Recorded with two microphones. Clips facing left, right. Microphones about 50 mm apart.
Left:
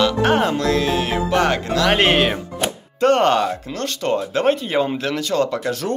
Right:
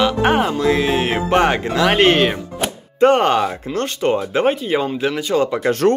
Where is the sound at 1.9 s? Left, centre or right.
Centre.